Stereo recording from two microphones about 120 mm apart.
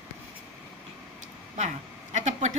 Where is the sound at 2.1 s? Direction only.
75° right (ahead or behind).